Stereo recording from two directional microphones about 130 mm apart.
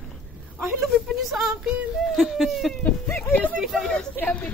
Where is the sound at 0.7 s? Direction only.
Centre (ahead or behind).